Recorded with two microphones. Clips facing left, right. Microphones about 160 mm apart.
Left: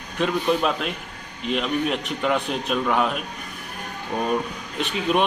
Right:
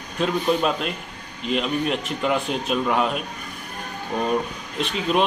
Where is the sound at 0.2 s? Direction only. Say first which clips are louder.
Even; centre (ahead or behind).